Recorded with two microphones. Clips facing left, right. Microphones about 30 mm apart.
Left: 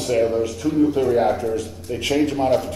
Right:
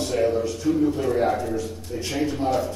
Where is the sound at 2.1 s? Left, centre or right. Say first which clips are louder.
Left 6 dB; left.